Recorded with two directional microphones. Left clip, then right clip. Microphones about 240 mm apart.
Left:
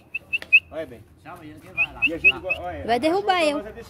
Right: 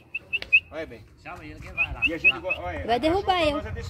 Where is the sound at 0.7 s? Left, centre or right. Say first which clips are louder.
Left 3 dB; centre.